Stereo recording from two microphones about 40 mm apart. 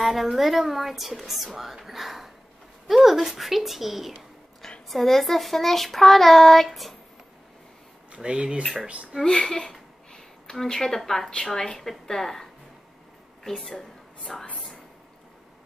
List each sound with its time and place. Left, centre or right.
0.0 s a woman's voice: centre
4.1 s speech: centre
8.1 s speech: right
9.2 s a sound: centre
11.1 s a woman's voice: centre